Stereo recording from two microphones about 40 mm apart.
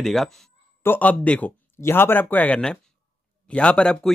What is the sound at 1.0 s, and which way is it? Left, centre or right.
Speech, left.